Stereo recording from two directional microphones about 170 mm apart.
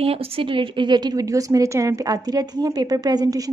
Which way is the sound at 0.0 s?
35° right (ahead or behind).